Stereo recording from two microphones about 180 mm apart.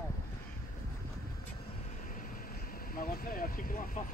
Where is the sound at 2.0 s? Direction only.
50° left (ahead or behind).